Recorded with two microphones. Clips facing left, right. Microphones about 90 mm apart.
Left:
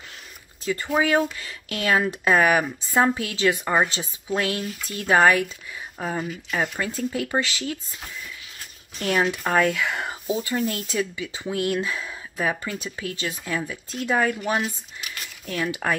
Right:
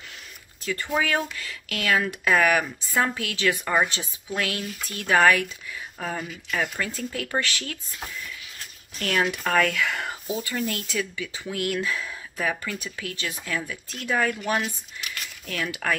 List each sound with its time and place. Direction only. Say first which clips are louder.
0.7 s speech: left 3 dB; 20° left (ahead or behind)
9.0 s speech: left 2 dB; 20° left (ahead or behind)